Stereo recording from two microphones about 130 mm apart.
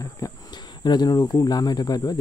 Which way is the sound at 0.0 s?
30° left (ahead or behind).